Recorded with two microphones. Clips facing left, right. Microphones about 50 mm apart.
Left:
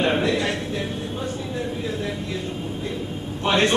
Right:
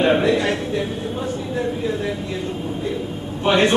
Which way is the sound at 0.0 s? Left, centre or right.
Centre.